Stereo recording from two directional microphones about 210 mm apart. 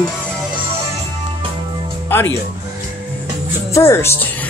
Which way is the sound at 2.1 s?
10° left (ahead or behind).